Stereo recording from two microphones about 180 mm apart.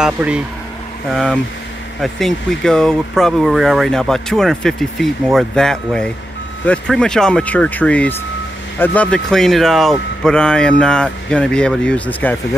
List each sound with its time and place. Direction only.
0.0 s speech: 5° right (ahead or behind)